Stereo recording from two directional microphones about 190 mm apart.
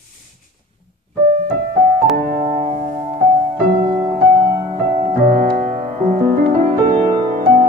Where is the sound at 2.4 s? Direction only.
30° right (ahead or behind).